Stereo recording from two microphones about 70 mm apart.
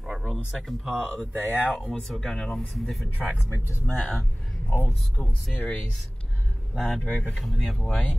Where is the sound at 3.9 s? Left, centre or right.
Left.